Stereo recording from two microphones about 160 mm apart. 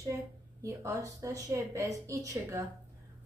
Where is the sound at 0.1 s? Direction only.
20° right (ahead or behind).